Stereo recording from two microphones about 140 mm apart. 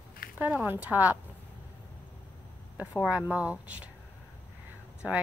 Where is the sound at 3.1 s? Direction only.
10° right (ahead or behind).